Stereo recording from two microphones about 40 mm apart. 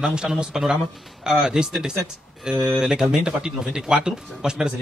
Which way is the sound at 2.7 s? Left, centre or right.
Centre.